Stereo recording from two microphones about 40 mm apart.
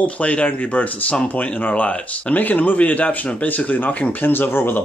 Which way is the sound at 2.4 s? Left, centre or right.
Left.